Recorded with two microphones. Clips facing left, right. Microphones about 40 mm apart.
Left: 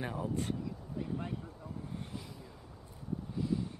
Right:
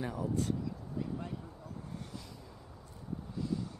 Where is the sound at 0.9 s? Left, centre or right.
Left.